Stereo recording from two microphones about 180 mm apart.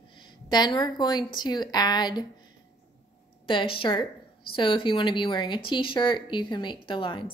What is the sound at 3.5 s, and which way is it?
Speech, 30° left (ahead or behind).